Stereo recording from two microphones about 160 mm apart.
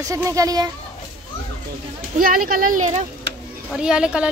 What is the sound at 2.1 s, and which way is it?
Speech, 60° right (ahead or behind).